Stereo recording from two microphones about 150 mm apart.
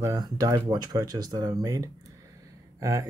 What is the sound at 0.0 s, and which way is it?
Speech, 25° right (ahead or behind).